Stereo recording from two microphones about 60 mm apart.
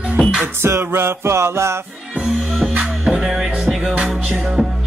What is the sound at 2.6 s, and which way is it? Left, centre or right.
Music, centre.